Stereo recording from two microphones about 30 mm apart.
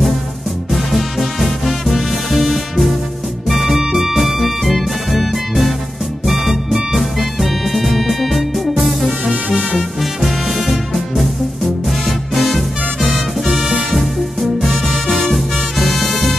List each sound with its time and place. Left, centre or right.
0.7 s music: centre
3.4 s music: centre
6.2 s music: centre
10.2 s music: centre
12.4 s music: centre